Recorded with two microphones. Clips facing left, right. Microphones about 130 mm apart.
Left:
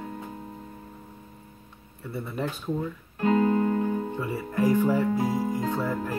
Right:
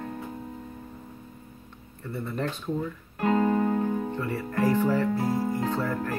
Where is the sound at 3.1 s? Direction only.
55° right (ahead or behind).